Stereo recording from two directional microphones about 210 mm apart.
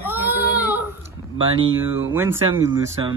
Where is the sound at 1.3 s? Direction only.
25° right (ahead or behind).